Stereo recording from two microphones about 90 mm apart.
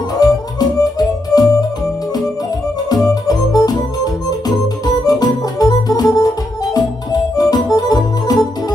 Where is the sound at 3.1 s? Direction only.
45° left (ahead or behind).